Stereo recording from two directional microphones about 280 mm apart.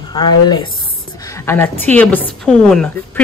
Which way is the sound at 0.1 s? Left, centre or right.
Centre.